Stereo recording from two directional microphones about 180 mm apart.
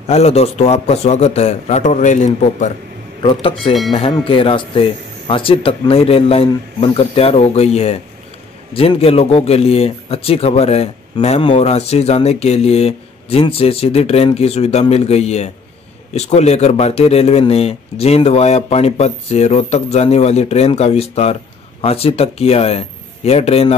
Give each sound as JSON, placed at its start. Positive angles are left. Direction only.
{"t": 0.0, "sound": "speech", "side_deg": 35}
{"t": 3.2, "sound": "speech", "side_deg": 30}